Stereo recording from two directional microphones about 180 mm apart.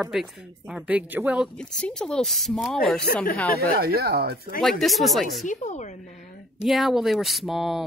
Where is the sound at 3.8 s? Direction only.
60° right (ahead or behind).